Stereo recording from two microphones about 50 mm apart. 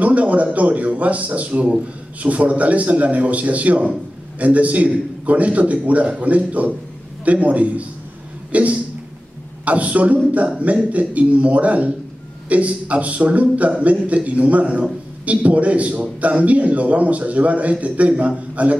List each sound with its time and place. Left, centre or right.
0.0 s a man's voice: right